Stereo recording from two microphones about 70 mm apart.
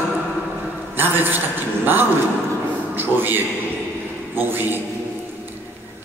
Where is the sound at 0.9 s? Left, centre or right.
Right.